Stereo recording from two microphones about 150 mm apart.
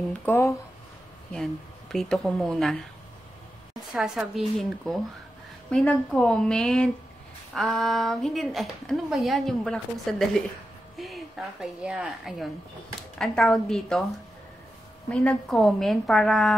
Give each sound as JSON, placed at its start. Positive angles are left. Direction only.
{"t": 0.2, "sound": "speech", "side_deg": 20}
{"t": 1.3, "sound": "speech", "side_deg": 0}
{"t": 3.9, "sound": "a woman's voice", "side_deg": -5}
{"t": 15.0, "sound": "speech", "side_deg": 5}